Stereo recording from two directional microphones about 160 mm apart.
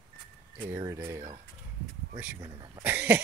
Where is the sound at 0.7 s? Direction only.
20° right (ahead or behind).